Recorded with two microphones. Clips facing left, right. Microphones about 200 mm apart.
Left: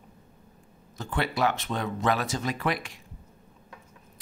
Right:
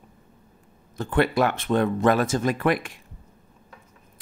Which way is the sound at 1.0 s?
55° right (ahead or behind).